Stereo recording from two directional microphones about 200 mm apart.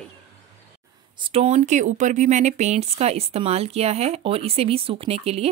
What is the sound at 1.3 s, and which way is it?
Speech, 30° right (ahead or behind).